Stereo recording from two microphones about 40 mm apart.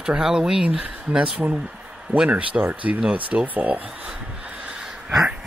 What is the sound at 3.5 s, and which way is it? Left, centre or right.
Speech, right.